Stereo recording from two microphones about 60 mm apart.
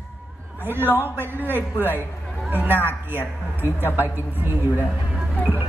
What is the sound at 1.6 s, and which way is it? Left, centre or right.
Speech, left.